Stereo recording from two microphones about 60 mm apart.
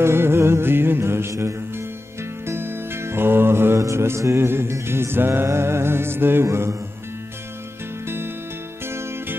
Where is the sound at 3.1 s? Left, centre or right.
Right.